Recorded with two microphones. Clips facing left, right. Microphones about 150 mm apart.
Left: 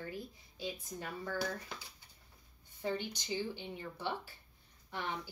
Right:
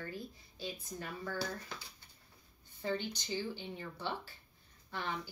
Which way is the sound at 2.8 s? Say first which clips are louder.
Even; 15° left (ahead or behind).